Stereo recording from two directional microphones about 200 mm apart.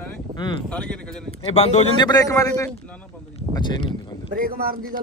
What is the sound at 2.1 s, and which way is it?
Speech, 15° left (ahead or behind).